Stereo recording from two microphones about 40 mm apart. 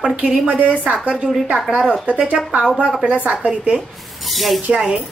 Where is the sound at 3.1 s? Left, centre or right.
Right.